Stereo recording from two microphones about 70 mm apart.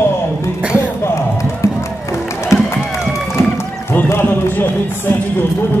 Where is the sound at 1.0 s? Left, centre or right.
Left.